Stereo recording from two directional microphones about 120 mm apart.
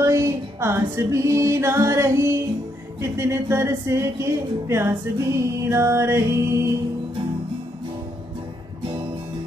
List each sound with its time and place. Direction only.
0.0 s music: 25° right (ahead or behind)
3.0 s speech: 20° right (ahead or behind)